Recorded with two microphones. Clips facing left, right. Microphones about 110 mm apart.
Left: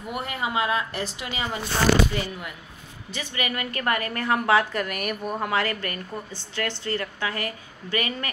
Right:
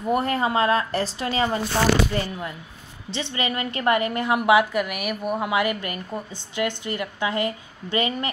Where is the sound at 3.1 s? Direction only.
25° right (ahead or behind).